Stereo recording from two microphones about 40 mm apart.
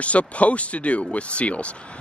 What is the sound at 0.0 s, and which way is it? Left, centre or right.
Speech, left.